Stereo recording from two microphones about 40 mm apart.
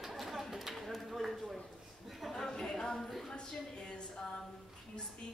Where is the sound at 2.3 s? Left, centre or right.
Centre.